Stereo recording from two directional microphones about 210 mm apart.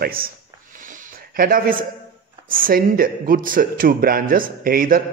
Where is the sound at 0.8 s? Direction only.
45° right (ahead or behind).